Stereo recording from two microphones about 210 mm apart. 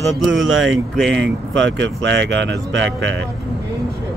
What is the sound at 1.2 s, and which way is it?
Speech, 60° right (ahead or behind).